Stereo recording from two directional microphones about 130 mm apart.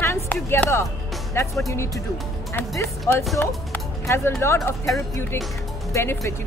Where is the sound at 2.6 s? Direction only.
20° left (ahead or behind).